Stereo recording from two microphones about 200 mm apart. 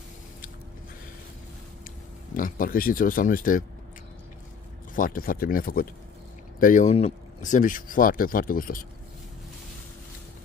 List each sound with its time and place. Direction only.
2.3 s speech: 45° left (ahead or behind)
4.9 s speech: 45° left (ahead or behind)